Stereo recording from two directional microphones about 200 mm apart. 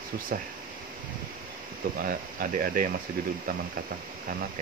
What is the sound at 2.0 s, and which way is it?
Speech, 45° right (ahead or behind).